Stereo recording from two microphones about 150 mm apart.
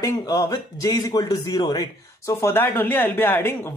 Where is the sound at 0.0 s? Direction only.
25° left (ahead or behind).